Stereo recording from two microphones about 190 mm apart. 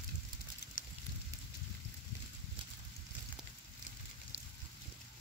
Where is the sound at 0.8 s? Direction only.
45° left (ahead or behind).